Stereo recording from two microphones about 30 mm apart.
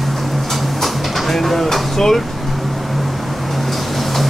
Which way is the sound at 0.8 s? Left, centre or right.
Centre.